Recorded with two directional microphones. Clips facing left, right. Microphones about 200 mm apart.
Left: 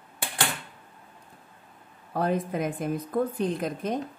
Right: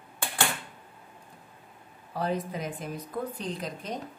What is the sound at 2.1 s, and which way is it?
A woman's voice, 55° left (ahead or behind).